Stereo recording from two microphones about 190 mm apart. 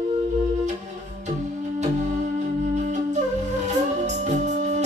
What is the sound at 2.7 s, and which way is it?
Flute, 35° right (ahead or behind).